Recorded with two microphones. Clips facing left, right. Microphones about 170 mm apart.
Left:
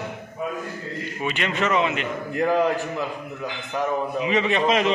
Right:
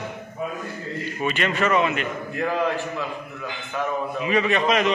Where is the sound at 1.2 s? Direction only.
15° left (ahead or behind).